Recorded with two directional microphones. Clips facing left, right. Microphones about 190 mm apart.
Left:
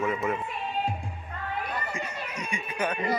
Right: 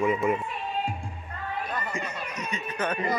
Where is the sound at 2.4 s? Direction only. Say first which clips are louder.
Even; 10° left (ahead or behind).